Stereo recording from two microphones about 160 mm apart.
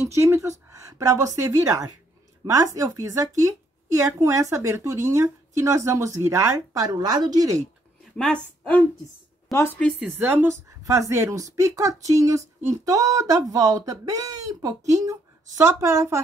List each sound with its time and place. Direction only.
0.1 s speech: 15° right (ahead or behind)
8.2 s a woman's voice: 5° left (ahead or behind)
9.9 s a woman's voice: 10° right (ahead or behind)